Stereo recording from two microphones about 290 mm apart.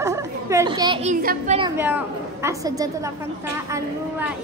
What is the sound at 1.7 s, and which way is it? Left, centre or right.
A child's voice, centre.